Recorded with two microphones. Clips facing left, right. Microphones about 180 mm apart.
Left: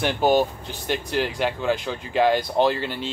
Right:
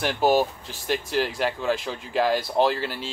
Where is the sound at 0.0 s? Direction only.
Centre (ahead or behind).